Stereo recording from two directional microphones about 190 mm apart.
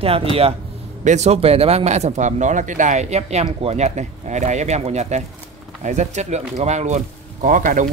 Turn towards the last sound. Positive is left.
turn(degrees=-45)  # may be behind; listen again after turning